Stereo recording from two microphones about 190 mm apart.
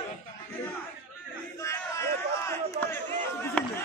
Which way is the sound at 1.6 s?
15° left (ahead or behind).